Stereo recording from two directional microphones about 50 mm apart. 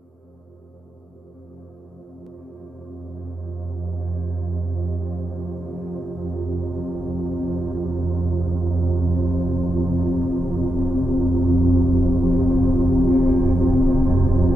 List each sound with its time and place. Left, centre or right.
5.0 s music: centre